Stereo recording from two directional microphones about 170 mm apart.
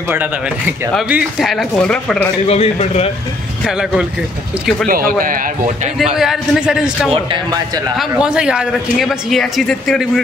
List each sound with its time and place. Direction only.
0.9 s speech: 5° right (ahead or behind)
2.4 s a man's voice: 35° left (ahead or behind)
4.8 s a man's voice: 60° right (ahead or behind)
6.1 s speech: 5° right (ahead or behind)
8.2 s speech: 5° right (ahead or behind)